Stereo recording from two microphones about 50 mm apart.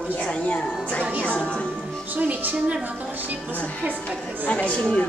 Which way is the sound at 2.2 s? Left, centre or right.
Right.